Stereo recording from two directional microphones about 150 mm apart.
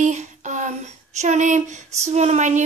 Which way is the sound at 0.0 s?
55° right (ahead or behind).